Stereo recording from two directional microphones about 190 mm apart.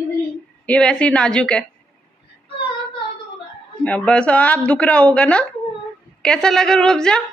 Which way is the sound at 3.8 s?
5° left (ahead or behind).